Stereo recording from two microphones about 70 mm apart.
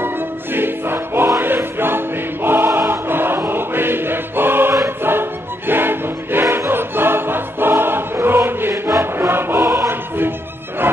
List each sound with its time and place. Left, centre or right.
0.0 s music: right
1.4 s choir: right
5.7 s music: right